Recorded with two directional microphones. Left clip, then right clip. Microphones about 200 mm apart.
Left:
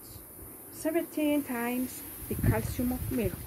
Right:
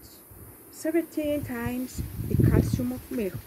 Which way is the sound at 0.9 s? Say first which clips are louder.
Right 2 dB; 50° right (ahead or behind).